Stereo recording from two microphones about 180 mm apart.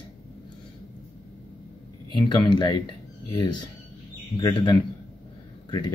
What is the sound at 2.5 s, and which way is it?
Speech, 25° left (ahead or behind).